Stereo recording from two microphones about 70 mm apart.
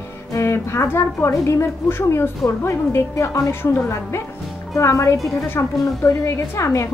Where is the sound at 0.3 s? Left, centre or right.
Left.